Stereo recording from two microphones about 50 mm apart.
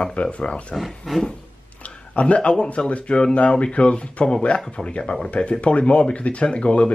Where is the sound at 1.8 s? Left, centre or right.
Left.